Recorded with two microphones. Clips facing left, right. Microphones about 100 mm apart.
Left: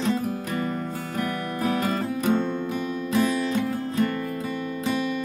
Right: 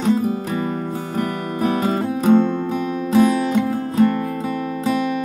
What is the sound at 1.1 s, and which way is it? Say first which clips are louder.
Music: right 4 dB; 30° right (ahead or behind).